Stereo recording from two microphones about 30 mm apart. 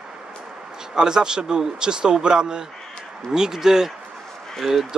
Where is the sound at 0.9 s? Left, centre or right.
Right.